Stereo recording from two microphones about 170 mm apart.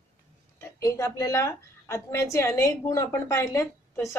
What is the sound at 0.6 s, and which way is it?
A woman's voice, 15° left (ahead or behind).